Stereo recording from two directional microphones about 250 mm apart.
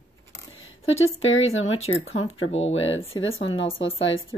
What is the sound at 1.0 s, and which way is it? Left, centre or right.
Speech, left.